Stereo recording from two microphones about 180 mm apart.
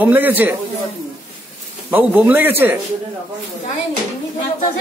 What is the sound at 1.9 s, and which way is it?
Speech, 10° right (ahead or behind).